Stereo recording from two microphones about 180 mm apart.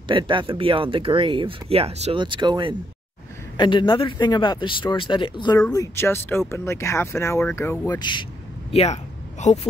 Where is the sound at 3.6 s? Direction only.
25° left (ahead or behind).